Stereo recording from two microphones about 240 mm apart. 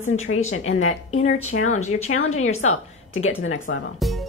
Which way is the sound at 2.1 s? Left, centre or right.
Left.